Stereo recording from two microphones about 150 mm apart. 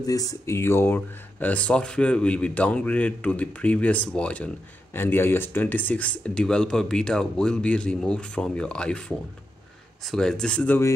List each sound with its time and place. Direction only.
0.0 s speech: 25° left (ahead or behind)